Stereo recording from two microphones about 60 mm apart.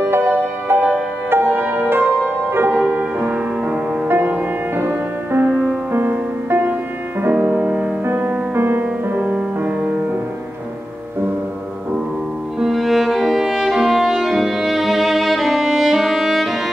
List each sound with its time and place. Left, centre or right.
0.0 s music: right
1.5 s music: right
2.8 s music: right
5.5 s music: centre
5.9 s music: right
7.3 s music: right
8.0 s music: right
12.5 s music: centre